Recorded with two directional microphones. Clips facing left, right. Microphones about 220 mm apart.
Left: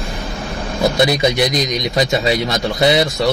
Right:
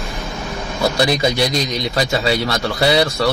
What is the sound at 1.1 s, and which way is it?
A man's voice, 20° left (ahead or behind).